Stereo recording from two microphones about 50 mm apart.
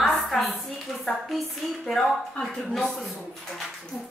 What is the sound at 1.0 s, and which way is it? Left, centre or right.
A woman's voice, centre.